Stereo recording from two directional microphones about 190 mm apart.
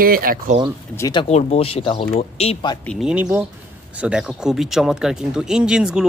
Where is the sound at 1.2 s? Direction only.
35° left (ahead or behind).